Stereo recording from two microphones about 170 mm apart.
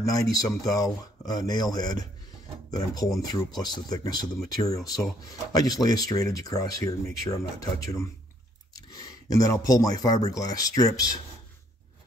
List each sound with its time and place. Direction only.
0.0 s speech: 20° left (ahead or behind)